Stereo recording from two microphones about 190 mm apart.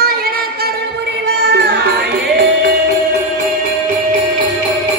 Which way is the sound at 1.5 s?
60° right (ahead or behind).